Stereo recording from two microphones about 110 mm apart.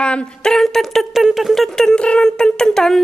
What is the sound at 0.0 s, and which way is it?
A woman's voice, 10° left (ahead or behind).